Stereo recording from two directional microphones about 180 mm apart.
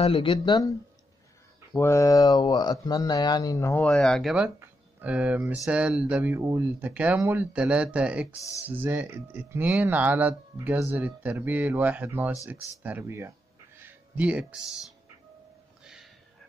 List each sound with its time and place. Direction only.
0.0 s speech: 30° left (ahead or behind)
1.8 s speech: 15° left (ahead or behind); by 13.3 s 10° right (ahead or behind)
13.7 s music: 10° right (ahead or behind)
15.8 s music: 5° right (ahead or behind)